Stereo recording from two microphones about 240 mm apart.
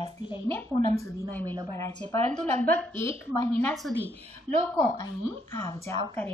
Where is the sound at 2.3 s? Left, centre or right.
Right.